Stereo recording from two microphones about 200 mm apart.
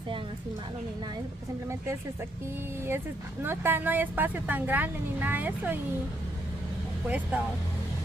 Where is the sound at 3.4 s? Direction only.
10° right (ahead or behind).